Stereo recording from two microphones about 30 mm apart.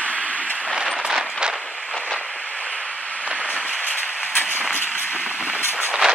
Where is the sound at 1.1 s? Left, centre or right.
Right.